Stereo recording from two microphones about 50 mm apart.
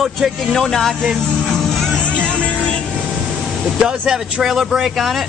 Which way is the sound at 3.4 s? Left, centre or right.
Centre.